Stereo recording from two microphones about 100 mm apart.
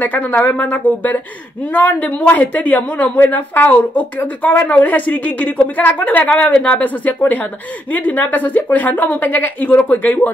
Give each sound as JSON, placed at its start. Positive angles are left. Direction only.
{"t": 0.0, "sound": "speech", "side_deg": 15}